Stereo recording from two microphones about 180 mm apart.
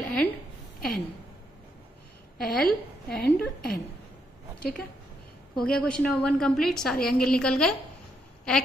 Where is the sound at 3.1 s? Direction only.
60° left (ahead or behind).